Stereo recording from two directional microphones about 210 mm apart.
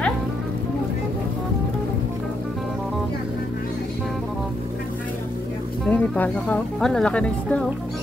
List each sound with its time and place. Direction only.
5.9 s speech: 5° left (ahead or behind)